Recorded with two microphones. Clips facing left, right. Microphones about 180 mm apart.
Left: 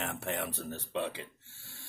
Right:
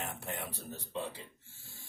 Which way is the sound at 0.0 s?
80° left.